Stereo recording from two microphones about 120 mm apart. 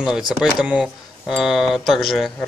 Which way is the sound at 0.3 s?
5° right (ahead or behind).